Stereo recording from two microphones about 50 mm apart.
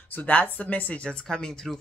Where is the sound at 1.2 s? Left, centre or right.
Centre.